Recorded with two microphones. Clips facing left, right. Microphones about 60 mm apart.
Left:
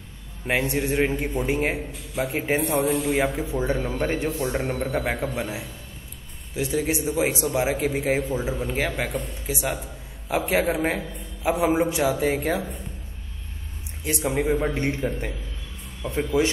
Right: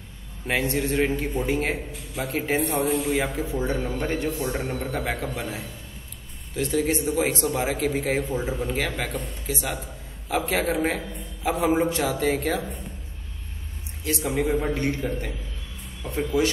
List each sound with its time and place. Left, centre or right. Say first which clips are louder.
0.5 s a man's voice: left 1 dB; centre
3.1 s a man's voice: left 2 dB; left
14.0 s a man's voice: left 1 dB; left